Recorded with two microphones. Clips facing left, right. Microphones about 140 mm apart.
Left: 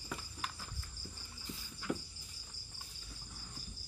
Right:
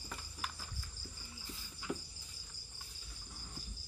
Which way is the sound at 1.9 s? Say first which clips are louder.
Left 3 dB; 15° right (ahead or behind).